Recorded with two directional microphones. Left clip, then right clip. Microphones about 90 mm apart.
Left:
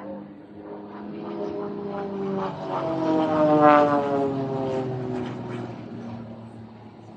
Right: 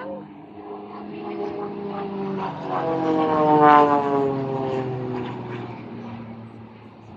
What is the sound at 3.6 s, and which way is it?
Vehicle, 30° left (ahead or behind).